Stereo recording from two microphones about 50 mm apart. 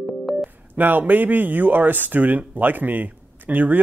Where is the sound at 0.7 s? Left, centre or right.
Right.